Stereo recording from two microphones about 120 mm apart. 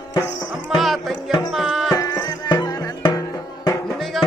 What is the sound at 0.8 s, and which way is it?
Music, centre (ahead or behind).